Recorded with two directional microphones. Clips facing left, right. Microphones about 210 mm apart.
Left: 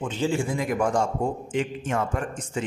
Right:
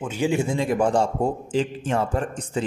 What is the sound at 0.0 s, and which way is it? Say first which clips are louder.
A man's voice: right 2 dB; 10° right (ahead or behind).